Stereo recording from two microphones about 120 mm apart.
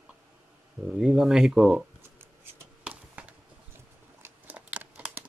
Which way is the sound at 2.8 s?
10° right (ahead or behind).